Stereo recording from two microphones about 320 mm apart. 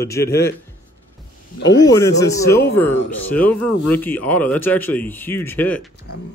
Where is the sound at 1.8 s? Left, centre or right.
Centre.